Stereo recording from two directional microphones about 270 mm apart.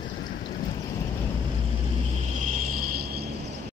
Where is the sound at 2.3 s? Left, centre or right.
Right.